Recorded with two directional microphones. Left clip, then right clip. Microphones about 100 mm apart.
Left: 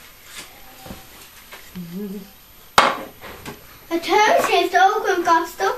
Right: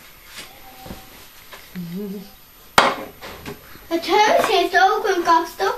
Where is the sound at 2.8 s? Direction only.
Centre (ahead or behind).